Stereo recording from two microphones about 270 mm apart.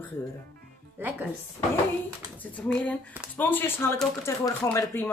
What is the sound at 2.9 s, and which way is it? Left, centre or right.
Speech, centre.